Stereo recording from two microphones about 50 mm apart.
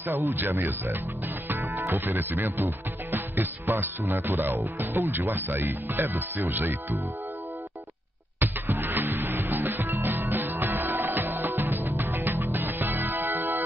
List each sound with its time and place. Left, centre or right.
0.0 s speech: right
1.5 s music: right
2.0 s speech: right
8.4 s music: right